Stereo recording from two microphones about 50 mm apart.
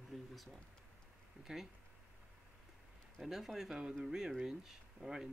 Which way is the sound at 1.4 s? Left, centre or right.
Centre.